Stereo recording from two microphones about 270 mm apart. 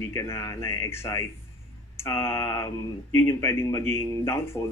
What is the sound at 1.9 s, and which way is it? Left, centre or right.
Mantra, centre.